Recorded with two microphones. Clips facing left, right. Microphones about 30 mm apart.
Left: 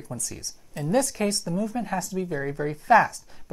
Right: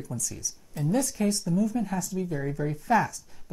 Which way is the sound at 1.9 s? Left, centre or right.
Left.